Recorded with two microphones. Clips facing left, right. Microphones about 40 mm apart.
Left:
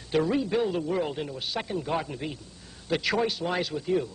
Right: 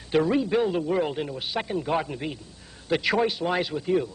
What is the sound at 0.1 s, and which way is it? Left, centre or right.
A man's voice, centre.